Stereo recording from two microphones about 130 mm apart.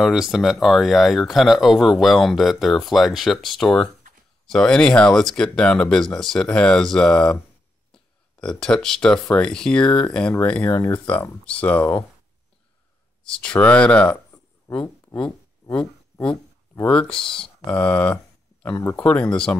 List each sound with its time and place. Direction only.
0.0 s speech: 5° right (ahead or behind)
7.9 s a sound: 5° left (ahead or behind)
9.3 s speech: 5° left (ahead or behind)
13.2 s speech: 5° left (ahead or behind)
14.3 s a sound: 20° left (ahead or behind)
16.9 s speech: 5° left (ahead or behind)
18.6 s speech: 20° left (ahead or behind)
19.0 s speech: 10° left (ahead or behind)